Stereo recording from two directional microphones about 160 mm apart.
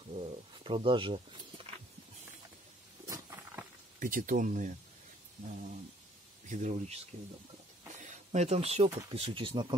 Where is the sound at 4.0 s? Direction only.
60° right (ahead or behind).